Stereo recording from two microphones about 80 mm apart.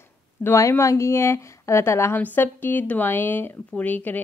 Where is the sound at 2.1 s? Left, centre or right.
Left.